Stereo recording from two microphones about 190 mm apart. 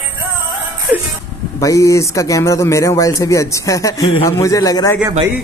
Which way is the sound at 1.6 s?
15° left (ahead or behind).